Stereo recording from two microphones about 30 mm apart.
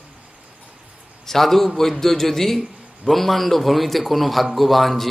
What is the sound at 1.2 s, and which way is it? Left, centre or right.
A man's voice, centre.